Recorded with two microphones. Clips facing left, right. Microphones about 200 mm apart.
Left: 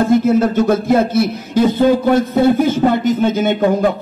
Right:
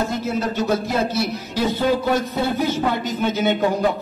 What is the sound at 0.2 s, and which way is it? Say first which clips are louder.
A man's voice: left 9 dB; 50° left (ahead or behind).